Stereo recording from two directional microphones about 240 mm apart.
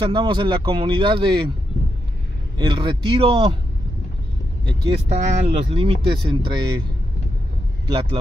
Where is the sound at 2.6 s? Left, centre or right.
Centre.